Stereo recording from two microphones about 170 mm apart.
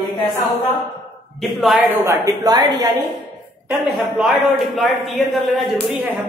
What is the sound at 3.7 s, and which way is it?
Speech, 5° right (ahead or behind).